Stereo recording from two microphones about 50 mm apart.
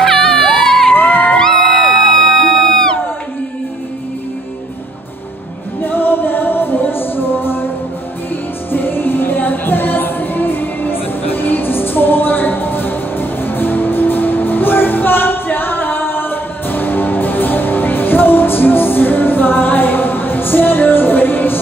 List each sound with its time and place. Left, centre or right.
0.0 s children shouting: centre
0.9 s crowd: left
1.4 s crowd: centre
2.4 s music: centre
5.8 s music: left
8.7 s music: left